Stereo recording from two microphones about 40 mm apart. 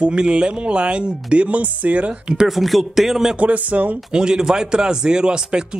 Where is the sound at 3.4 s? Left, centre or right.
Right.